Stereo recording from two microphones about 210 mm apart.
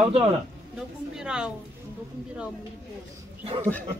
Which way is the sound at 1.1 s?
5° right (ahead or behind).